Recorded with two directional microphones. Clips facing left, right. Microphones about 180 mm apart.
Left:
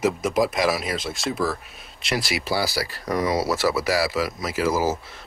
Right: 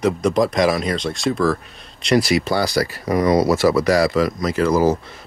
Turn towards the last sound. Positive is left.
turn(degrees=5)  # may be behind; listen again after turning